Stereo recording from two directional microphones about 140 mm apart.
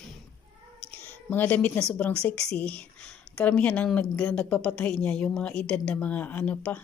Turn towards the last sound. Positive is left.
turn(degrees=10)  # may be behind; listen again after turning